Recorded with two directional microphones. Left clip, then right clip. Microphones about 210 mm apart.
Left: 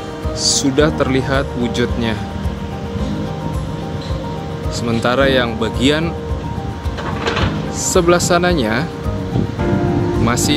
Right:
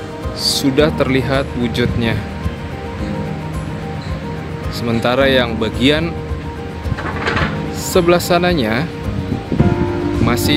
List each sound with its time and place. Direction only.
0.4 s speech: 5° right (ahead or behind)
4.8 s speech: 5° right (ahead or behind)
7.2 s music: 55° left (ahead or behind)
7.9 s speech: centre (ahead or behind)
10.2 s speech: centre (ahead or behind)